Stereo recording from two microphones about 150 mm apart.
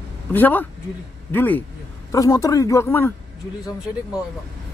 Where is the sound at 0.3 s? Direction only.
10° left (ahead or behind).